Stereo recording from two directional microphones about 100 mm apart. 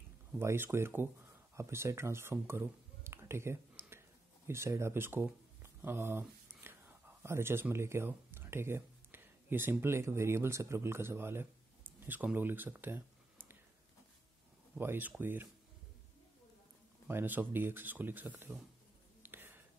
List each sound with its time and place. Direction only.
0.4 s speech: 25° right (ahead or behind)
14.8 s speech: 20° right (ahead or behind)
17.1 s speech: 20° right (ahead or behind)
19.2 s whispering: 20° right (ahead or behind)